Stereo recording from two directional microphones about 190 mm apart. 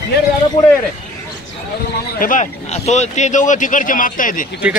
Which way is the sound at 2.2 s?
40° left (ahead or behind).